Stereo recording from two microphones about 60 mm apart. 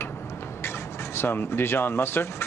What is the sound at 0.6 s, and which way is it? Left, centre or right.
Speech, left.